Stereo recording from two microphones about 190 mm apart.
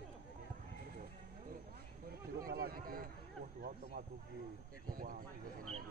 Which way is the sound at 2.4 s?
50° right (ahead or behind).